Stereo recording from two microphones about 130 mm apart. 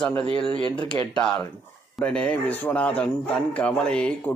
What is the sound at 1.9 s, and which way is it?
A man's voice, 10° left (ahead or behind).